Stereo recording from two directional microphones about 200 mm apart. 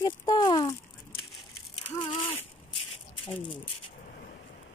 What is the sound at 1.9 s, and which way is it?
Rattle, 30° left (ahead or behind).